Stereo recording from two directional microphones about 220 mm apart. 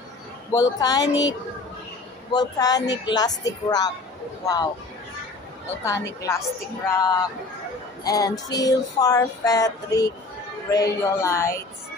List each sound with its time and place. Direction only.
0.5 s music: 15° left (ahead or behind)
2.3 s music: 15° left (ahead or behind)
5.9 s music: 15° left (ahead or behind)